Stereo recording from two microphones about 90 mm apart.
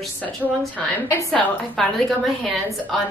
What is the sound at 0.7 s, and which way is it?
A woman's voice, 15° left (ahead or behind).